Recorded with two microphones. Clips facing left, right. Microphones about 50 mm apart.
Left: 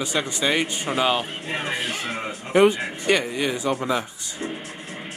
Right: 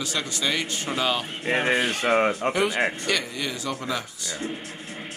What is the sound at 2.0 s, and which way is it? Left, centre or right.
Speech, right.